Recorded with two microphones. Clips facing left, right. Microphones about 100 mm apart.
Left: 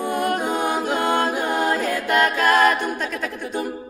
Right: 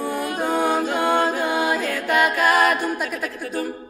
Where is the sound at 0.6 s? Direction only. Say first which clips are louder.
Right 1 dB; 15° left (ahead or behind).